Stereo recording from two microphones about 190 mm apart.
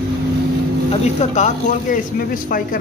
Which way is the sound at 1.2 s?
40° left (ahead or behind).